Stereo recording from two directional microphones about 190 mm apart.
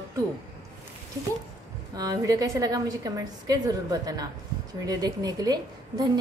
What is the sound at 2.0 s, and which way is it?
A woman's voice, 20° right (ahead or behind).